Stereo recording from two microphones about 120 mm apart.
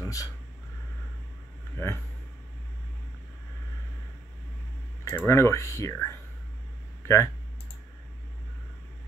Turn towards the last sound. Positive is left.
turn(degrees=25)  # may be behind; listen again after turning